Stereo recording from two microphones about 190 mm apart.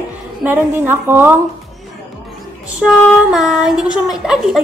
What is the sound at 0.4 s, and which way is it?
Speech, 10° right (ahead or behind).